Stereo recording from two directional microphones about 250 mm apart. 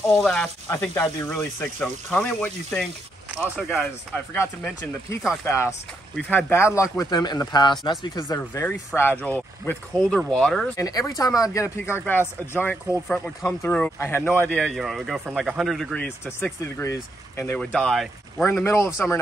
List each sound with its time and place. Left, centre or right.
0.2 s speech: centre
10.8 s speech: centre